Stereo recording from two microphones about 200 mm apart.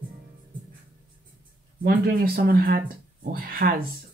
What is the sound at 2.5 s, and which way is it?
Speech, 45° right (ahead or behind).